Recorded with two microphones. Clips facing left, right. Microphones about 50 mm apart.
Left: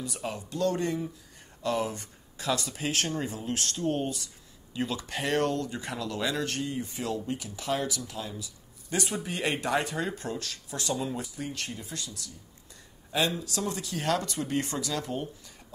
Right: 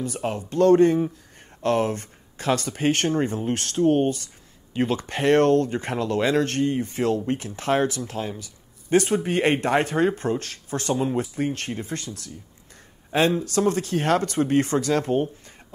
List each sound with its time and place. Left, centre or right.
0.0 s speech: right
13.4 s speech: right